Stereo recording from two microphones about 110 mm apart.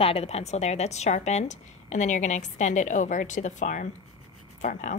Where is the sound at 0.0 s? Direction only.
65° left (ahead or behind); by 3.9 s 90° left.